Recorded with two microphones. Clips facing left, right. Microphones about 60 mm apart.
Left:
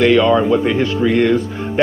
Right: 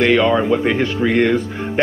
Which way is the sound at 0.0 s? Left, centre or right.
Right.